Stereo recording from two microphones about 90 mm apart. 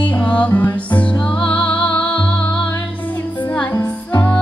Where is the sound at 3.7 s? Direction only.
35° left (ahead or behind).